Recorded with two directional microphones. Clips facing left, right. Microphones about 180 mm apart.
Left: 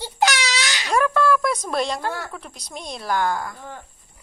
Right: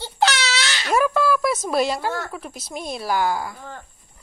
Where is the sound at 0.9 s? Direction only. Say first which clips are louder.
Even; 5° right (ahead or behind).